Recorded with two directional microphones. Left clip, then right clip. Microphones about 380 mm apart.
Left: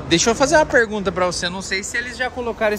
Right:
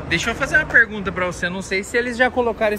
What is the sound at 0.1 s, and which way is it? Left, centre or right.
Speech, centre.